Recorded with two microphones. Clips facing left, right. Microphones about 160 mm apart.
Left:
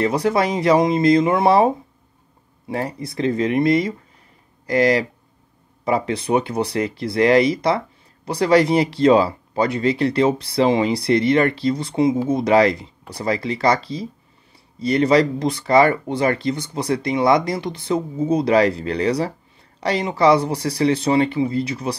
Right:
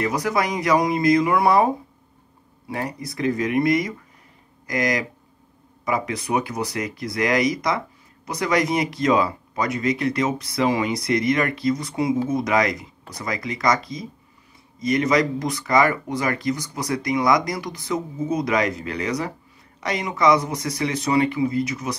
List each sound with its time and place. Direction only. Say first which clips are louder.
0.0 s speech: left 4 dB; 30° left (ahead or behind)
2.7 s speech: left 3 dB; 30° left (ahead or behind)